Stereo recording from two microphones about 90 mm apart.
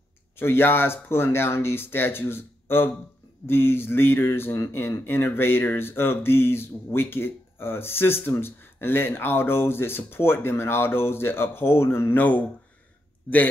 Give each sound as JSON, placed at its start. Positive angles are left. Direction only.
{"t": 0.4, "sound": "speech", "side_deg": 25}